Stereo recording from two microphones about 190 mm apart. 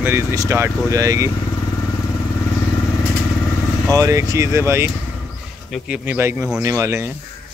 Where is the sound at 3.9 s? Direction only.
15° right (ahead or behind).